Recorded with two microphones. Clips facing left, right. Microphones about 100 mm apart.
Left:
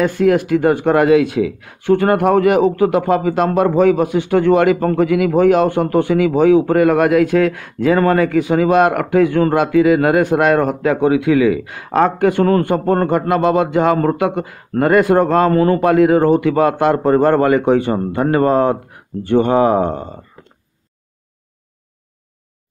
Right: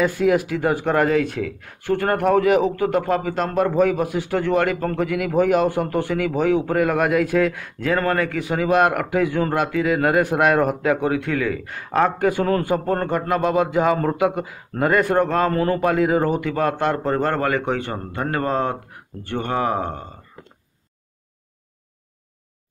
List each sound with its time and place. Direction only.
0.0 s speech: 5° right (ahead or behind)
11.0 s a man's voice: 5° left (ahead or behind)